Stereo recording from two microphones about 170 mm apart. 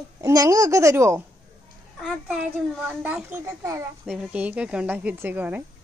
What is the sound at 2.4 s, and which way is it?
Speech, 10° right (ahead or behind).